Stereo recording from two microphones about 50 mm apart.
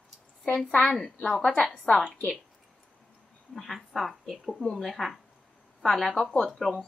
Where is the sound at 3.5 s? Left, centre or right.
Centre.